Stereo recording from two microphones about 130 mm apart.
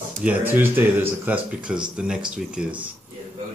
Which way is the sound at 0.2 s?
15° right (ahead or behind).